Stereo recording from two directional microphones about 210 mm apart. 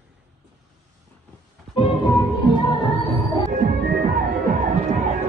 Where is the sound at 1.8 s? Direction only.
20° left (ahead or behind).